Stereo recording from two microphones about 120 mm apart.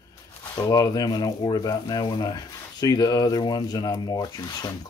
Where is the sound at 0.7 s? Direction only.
30° left (ahead or behind).